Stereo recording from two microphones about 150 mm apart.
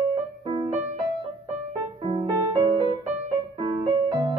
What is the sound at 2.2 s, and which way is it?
Music, 20° right (ahead or behind).